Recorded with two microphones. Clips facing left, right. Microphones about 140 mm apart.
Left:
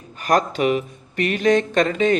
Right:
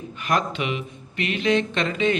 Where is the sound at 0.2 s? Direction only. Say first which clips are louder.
Left 6 dB; 40° left (ahead or behind).